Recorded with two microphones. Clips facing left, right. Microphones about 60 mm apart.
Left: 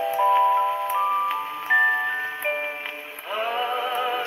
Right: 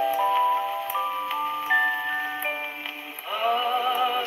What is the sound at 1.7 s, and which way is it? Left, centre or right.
Music, left.